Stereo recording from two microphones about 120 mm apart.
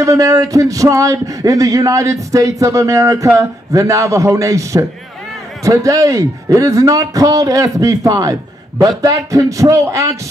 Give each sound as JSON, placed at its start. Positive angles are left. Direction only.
{"t": 0.0, "sound": "speech", "side_deg": -30}